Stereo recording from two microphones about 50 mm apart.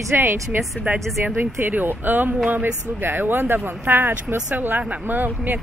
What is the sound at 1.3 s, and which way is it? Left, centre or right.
Speech, right.